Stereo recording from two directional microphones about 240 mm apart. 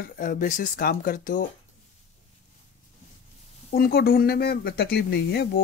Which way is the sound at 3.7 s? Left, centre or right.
Left.